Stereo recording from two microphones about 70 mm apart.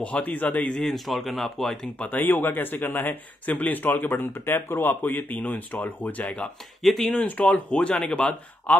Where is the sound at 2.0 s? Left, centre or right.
Left.